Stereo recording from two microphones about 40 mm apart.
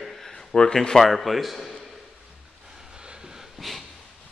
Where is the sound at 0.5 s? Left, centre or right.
Left.